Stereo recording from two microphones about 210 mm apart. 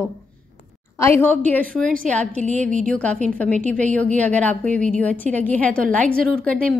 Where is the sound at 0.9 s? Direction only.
10° left (ahead or behind).